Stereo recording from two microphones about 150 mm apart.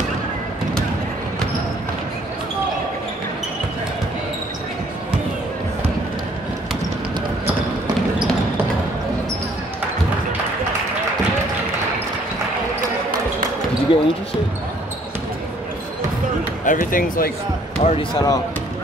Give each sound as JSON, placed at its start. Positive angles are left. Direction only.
{"t": 13.9, "sound": "basketball bounce", "side_deg": 35}
{"t": 16.6, "sound": "speech", "side_deg": 65}
{"t": 17.8, "sound": "speech", "side_deg": 45}
{"t": 18.1, "sound": "speech", "side_deg": 25}